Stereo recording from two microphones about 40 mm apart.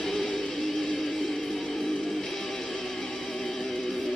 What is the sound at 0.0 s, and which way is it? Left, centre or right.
Music, centre.